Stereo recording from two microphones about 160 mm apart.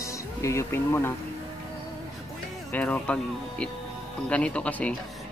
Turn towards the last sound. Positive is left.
turn(degrees=10)  # may be behind; listen again after turning